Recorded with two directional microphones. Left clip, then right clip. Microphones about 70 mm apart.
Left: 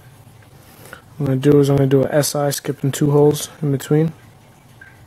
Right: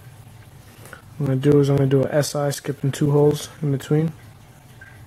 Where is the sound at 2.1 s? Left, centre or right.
Left.